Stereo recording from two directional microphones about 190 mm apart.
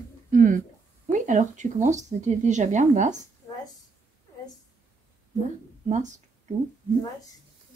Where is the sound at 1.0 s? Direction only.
40° right (ahead or behind).